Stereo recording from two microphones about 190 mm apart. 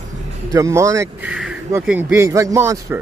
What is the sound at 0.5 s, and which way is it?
Speech, 15° right (ahead or behind).